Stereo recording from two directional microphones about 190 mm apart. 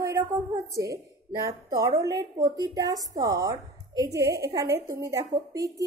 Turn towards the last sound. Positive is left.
turn(degrees=-20)  # may be behind; listen again after turning